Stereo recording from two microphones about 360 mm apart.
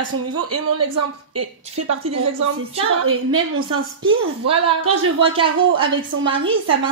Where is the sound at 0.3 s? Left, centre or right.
Right.